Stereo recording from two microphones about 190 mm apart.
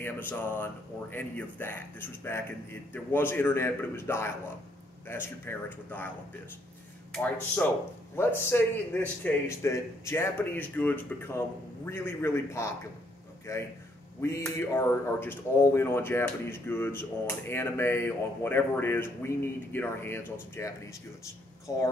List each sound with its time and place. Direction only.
0.0 s speech: 10° left (ahead or behind)
8.2 s speech: 10° left (ahead or behind)